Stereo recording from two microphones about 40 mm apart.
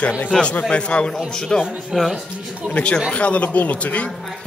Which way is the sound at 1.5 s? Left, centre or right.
Centre.